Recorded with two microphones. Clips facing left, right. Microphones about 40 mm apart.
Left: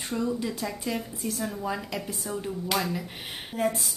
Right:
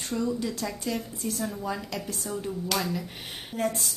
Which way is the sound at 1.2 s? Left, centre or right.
Centre.